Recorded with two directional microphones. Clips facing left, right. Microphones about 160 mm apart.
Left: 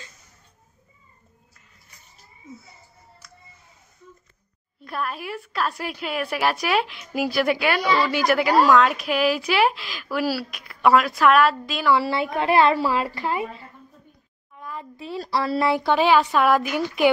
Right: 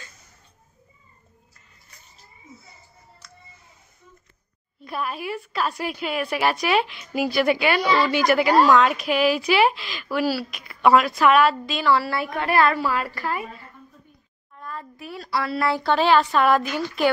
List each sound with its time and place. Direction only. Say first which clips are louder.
3.2 s music: right 2 dB; 5° left (ahead or behind)
4.8 s a woman's voice: right 1 dB; 5° right (ahead or behind)
11.9 s a woman's voice: left 1 dB; 25° left (ahead or behind)
14.5 s a sound: even; 10° left (ahead or behind)
15.0 s a woman's voice: left 2 dB; 30° left (ahead or behind)
15.6 s speech: even; 15° left (ahead or behind)